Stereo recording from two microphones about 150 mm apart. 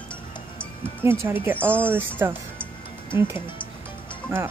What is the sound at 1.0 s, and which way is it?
Speech, 15° right (ahead or behind).